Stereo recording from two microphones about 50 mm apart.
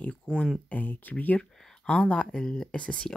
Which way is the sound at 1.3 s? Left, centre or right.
Centre.